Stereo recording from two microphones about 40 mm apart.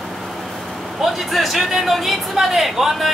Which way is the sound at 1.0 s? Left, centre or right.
Centre.